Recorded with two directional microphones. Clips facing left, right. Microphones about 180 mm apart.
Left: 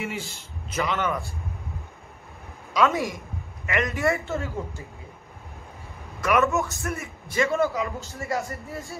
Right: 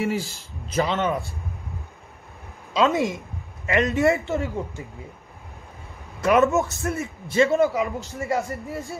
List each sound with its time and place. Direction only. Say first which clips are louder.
0.0 s a man's voice: right 7 dB; 35° right (ahead or behind)
2.7 s speech: right 2 dB; 25° right (ahead or behind)
6.2 s a man's voice: right 4 dB; 30° right (ahead or behind)
7.6 s speech: right 4 dB; 15° right (ahead or behind)